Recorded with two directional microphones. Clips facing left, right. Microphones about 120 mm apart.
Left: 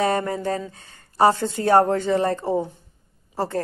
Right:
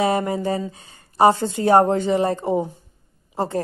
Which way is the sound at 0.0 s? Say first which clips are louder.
Right 2 dB; 15° right (ahead or behind).